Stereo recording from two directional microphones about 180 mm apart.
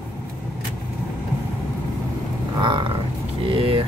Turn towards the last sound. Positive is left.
turn(degrees=-30)  # may be behind; listen again after turning